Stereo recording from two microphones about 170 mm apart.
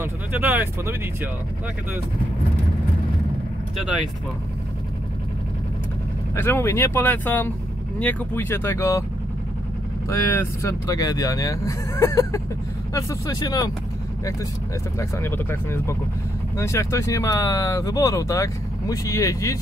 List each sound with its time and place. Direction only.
0.0 s speech: 10° right (ahead or behind)
6.3 s speech: 15° left (ahead or behind)
10.0 s speech: 15° left (ahead or behind)
15.0 s speech: 15° left (ahead or behind)